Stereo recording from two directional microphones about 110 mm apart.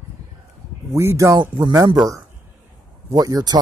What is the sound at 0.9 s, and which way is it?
Speech, 25° right (ahead or behind).